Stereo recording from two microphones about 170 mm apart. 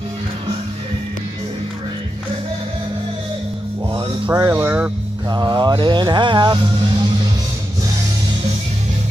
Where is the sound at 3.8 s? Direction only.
30° right (ahead or behind); by 4.9 s 10° right (ahead or behind).